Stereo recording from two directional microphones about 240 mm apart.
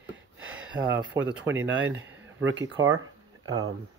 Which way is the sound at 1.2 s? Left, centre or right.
Right.